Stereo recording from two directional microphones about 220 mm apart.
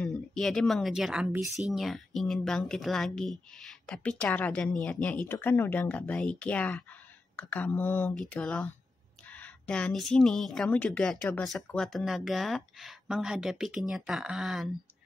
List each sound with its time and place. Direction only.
0.0 s a woman's voice: centre (ahead or behind)